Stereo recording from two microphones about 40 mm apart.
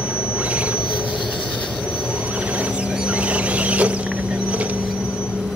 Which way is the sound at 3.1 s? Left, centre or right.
Right.